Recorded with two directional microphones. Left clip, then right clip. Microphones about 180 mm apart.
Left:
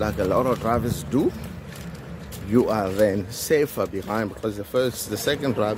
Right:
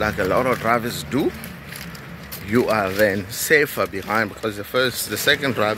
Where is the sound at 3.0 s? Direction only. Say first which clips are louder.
Right 2 dB; 10° left (ahead or behind).